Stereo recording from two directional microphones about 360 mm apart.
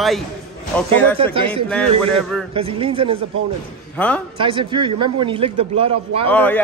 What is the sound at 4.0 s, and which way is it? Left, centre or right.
Speech, centre.